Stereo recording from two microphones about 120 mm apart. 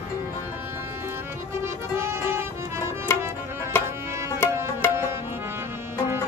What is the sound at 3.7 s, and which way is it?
Music, 20° left (ahead or behind).